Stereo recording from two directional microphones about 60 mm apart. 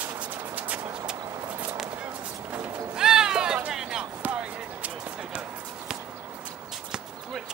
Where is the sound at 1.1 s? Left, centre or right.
Right.